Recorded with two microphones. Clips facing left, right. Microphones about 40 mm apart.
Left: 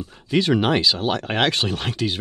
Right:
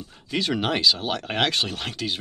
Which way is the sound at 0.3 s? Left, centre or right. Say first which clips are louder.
Left 6 dB; centre.